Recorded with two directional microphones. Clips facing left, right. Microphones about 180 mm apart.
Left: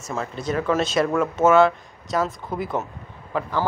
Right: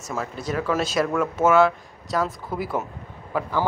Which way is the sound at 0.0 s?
5° right (ahead or behind).